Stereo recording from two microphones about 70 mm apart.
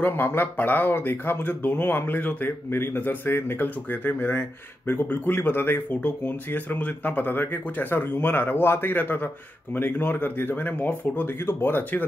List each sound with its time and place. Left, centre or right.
0.0 s speech: left